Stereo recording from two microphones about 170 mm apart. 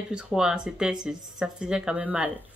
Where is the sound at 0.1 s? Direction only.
5° right (ahead or behind).